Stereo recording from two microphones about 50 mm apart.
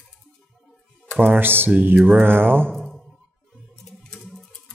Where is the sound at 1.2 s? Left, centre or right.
Right.